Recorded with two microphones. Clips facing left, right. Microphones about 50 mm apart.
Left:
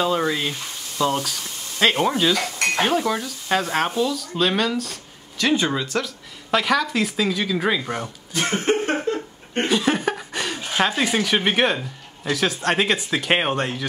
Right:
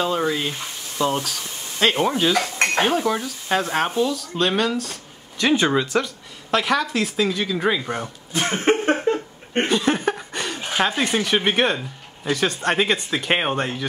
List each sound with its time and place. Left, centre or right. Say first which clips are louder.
0.0 s speech: left 1 dB; centre
5.4 s speech: right 2 dB; centre
6.0 s speech: even; centre
8.3 s cough: right 2 dB; right
9.0 s a sound: right 3 dB; right
9.7 s chuckle: left 1 dB; centre
10.8 s speech: even; centre